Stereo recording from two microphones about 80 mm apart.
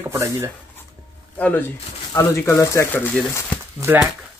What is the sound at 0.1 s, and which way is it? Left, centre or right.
Speech, right.